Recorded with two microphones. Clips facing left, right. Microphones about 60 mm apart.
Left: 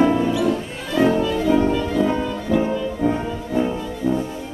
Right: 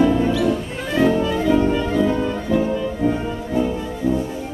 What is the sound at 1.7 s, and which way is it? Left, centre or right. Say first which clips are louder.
Music: right 1 dB; right.